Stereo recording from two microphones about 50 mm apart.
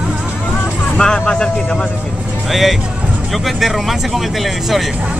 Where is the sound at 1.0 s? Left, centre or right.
Centre.